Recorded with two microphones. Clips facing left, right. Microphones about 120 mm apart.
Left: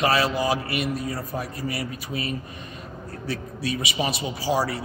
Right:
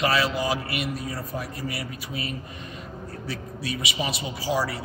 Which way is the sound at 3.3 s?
40° left (ahead or behind).